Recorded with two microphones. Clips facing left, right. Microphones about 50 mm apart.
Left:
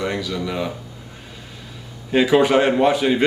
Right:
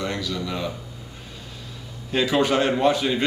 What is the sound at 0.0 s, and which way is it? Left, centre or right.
Speech, centre.